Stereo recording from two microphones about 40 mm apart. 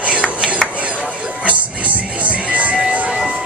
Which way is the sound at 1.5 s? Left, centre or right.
Right.